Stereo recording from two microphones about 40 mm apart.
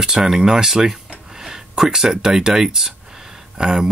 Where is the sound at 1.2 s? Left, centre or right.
Centre.